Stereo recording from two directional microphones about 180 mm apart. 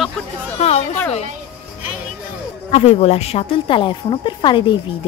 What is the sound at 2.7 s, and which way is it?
Speech, 35° left (ahead or behind).